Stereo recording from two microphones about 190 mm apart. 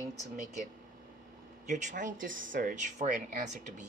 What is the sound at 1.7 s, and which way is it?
Speech, 40° right (ahead or behind).